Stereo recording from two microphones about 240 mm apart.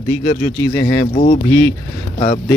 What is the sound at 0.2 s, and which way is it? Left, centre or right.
Speech, left.